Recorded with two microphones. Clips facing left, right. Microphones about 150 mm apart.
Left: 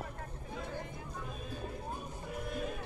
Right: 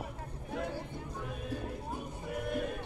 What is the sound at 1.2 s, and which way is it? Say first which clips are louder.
Music: right 5 dB; 65° right (ahead or behind).